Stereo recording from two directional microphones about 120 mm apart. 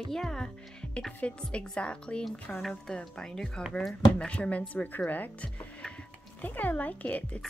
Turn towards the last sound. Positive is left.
turn(degrees=15)  # may be behind; listen again after turning